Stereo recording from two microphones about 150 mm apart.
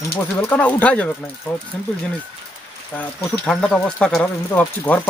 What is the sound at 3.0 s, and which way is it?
Speech, 5° left (ahead or behind).